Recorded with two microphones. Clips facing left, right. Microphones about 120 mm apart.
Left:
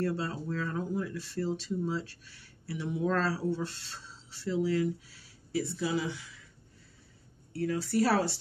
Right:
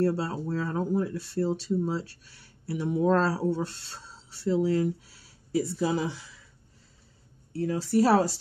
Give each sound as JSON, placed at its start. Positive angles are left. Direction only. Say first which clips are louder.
{"t": 0.0, "sound": "speech", "louder": "right 6 dB", "side_deg": -40}
{"t": 7.5, "sound": "speech", "louder": "right 4 dB", "side_deg": -25}